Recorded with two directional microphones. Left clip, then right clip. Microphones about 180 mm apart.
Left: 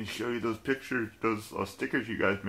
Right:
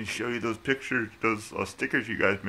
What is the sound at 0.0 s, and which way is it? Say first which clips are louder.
Speech: right 2 dB; 10° right (ahead or behind).